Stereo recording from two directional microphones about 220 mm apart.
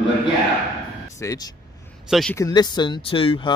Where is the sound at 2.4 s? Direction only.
15° left (ahead or behind).